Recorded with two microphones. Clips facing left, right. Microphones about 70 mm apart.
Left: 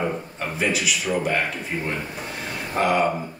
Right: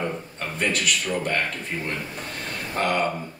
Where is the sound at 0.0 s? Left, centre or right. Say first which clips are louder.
Left 3 dB; centre.